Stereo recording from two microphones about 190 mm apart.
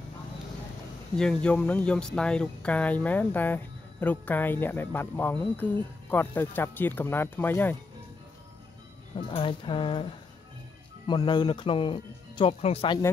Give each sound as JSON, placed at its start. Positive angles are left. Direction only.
{"t": 1.1, "sound": "speech", "side_deg": 5}
{"t": 9.1, "sound": "speech", "side_deg": 30}
{"t": 11.1, "sound": "speech", "side_deg": 20}